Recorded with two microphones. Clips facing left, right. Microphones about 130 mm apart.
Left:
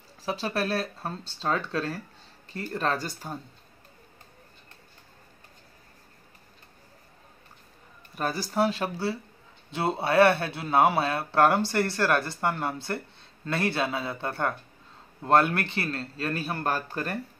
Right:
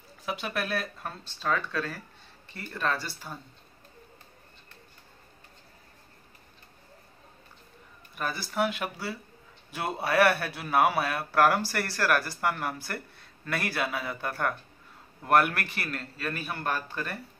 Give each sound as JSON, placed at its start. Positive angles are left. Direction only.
{"t": 0.2, "sound": "a man's voice", "side_deg": 30}
{"t": 8.2, "sound": "a man's voice", "side_deg": 35}